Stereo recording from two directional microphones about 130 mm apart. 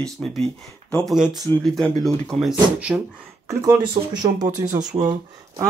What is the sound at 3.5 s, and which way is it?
Speech, 25° right (ahead or behind).